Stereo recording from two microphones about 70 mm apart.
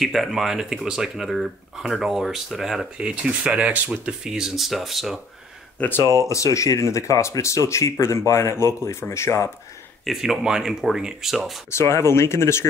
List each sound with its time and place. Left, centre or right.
0.0 s speech: centre
5.8 s speech: left
6.1 s speech: left
10.0 s speech: centre
11.7 s speech: left